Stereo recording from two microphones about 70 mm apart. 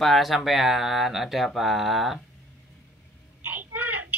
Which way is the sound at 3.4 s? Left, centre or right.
Right.